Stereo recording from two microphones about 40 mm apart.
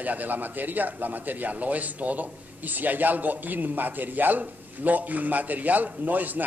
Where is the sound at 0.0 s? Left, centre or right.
Right.